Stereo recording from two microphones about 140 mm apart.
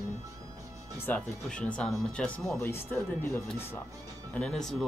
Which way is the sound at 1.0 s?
5° left (ahead or behind).